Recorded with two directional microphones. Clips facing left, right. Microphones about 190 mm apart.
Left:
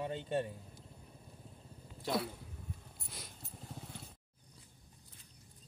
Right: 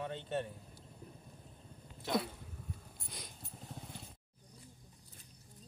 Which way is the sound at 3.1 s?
Centre (ahead or behind).